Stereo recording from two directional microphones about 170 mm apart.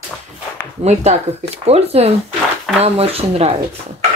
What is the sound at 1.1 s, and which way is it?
Speech, 45° right (ahead or behind).